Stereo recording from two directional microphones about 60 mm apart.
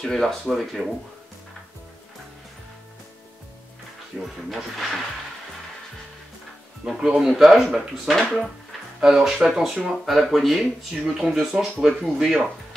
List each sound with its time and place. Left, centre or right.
0.0 s speech: centre
4.2 s speech: centre
7.1 s speech: centre